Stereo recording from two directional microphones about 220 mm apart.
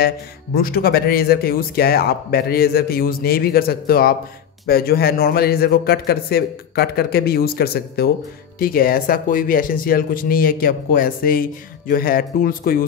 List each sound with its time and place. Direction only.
0.6 s speech: 45° left (ahead or behind)